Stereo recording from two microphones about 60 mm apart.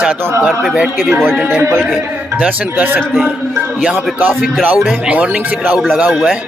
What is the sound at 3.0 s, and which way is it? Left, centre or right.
Speech, centre.